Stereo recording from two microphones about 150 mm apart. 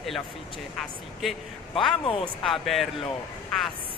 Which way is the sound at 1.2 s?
Centre (ahead or behind).